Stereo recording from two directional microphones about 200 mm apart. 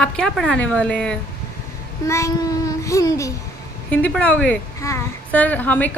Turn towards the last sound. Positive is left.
turn(degrees=10)  # may be behind; listen again after turning